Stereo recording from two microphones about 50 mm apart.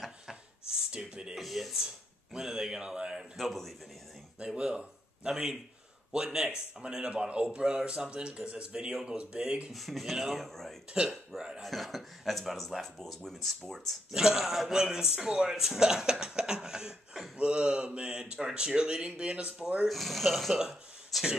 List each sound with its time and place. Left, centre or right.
0.0 s a sound: centre
0.9 s music: centre
1.3 s a man's voice: centre
3.3 s speech: centre
4.4 s speech: centre
9.7 s speech: centre
10.9 s a man's voice: centre
11.6 s speech: centre
14.1 s a man's voice: centre
17.4 s speech: right
19.9 s speech: centre